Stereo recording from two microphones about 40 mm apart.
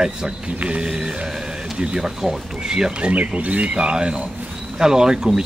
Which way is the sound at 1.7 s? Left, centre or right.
Right.